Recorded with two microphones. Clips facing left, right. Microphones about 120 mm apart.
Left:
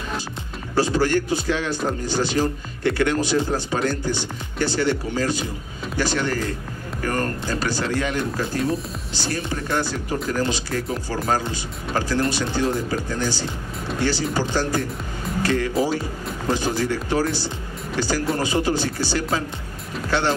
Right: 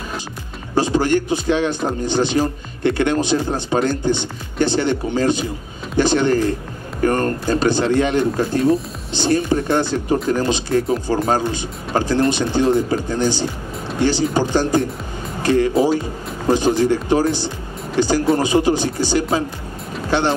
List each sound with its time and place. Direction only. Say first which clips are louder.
0.7 s a man's voice: right 3 dB; 20° right (ahead or behind)